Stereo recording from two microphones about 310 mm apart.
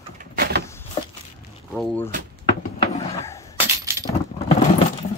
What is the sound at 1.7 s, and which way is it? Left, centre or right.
Speech, centre.